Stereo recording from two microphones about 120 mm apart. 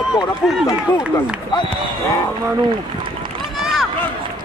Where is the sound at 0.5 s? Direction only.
5° right (ahead or behind).